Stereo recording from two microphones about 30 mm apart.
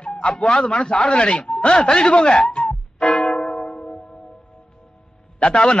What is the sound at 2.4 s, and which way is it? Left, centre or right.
Music, left.